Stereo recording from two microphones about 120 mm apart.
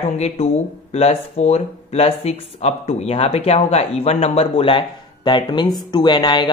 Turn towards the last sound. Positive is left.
turn(degrees=40)  # may be behind; listen again after turning